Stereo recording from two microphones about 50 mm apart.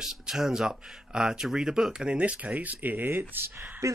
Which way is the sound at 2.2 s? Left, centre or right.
Right.